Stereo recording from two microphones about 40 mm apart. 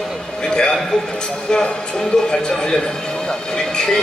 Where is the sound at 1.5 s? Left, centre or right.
Centre.